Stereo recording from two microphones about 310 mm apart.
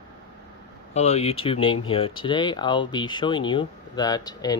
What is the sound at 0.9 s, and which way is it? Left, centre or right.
Speech, left.